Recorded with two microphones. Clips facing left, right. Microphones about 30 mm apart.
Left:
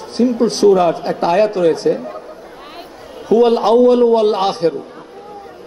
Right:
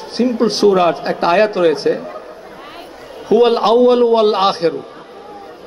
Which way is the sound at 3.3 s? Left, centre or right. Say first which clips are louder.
Even; right.